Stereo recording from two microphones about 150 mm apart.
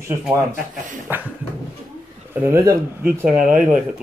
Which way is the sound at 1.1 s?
15° right (ahead or behind).